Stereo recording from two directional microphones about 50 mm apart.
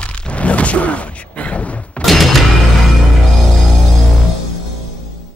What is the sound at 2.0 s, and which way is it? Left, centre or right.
Music, centre.